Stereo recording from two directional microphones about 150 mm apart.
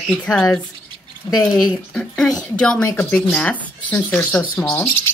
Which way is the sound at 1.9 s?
5° left (ahead or behind).